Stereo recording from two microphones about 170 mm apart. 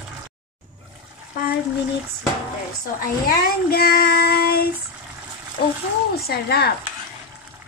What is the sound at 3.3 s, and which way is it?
Child singing, 65° left (ahead or behind).